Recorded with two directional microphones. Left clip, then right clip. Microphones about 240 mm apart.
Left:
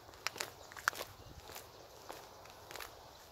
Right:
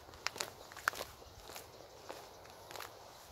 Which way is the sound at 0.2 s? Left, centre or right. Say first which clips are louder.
Right 1 dB; centre.